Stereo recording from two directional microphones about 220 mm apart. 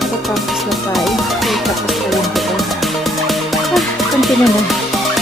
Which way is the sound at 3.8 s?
Centre (ahead or behind).